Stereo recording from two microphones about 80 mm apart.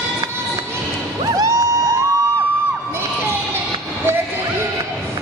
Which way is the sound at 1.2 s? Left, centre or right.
Right.